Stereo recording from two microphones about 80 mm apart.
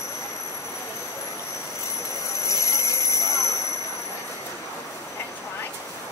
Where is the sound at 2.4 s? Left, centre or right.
Left.